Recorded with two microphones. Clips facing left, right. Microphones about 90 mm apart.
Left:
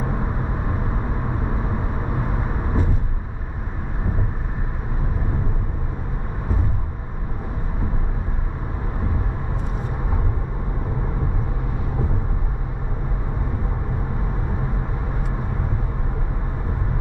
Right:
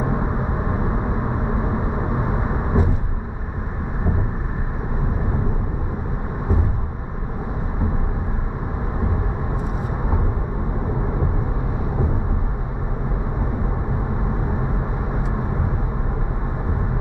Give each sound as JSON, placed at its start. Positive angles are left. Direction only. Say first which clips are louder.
{"t": 0.0, "sound": "vehicle", "louder": "right 3 dB", "side_deg": -15}